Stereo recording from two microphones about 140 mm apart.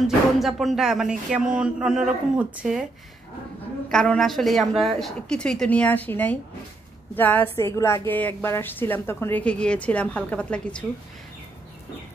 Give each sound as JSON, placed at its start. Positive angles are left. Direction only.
{"t": 0.0, "sound": "speech", "side_deg": 0}
{"t": 3.9, "sound": "a woman's voice", "side_deg": 5}